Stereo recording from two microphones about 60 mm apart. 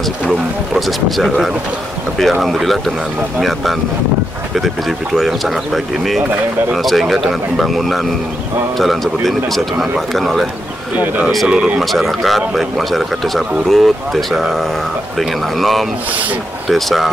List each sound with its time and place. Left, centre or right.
0.3 s speech: centre
3.3 s speech: centre
11.4 s speech: centre
11.8 s speech: centre